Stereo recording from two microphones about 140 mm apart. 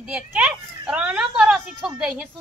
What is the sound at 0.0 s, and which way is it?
A child's voice, 10° right (ahead or behind).